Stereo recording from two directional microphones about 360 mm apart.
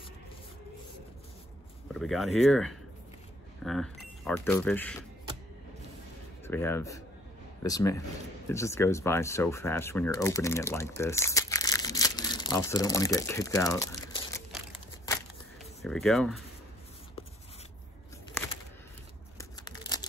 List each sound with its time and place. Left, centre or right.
1.9 s speech: centre
6.4 s speech: centre
15.8 s speech: centre
19.3 s scissors: centre